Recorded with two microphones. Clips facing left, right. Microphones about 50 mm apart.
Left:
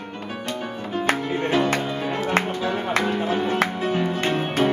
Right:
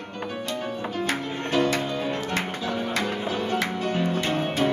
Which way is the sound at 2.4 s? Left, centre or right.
Left.